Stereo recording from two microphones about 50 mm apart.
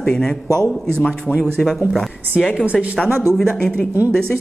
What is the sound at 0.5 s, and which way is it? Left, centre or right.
Speech, right.